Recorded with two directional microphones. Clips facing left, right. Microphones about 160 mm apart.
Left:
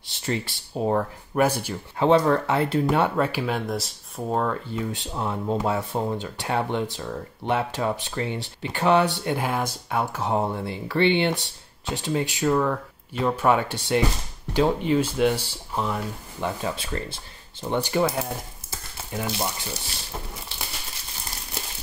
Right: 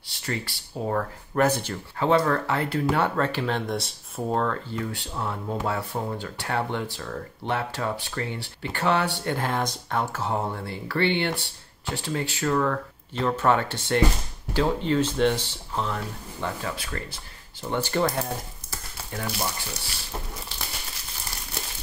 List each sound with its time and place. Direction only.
0.1 s speech: 20° left (ahead or behind)
1.4 s speech: 10° left (ahead or behind)
18.2 s a sound: 20° left (ahead or behind)